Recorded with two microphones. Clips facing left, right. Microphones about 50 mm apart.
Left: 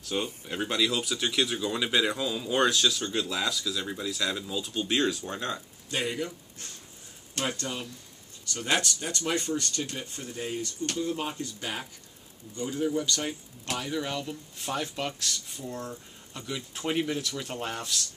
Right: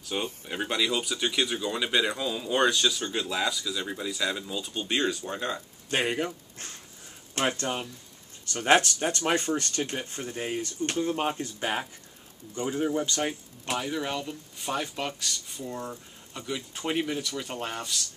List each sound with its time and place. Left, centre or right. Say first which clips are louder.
0.0 s speech: even; centre
5.9 s speech: right 3 dB; right; by 18.0 s centre